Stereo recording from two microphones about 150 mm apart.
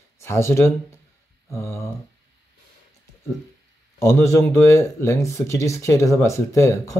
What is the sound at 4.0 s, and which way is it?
Speech, 20° left (ahead or behind).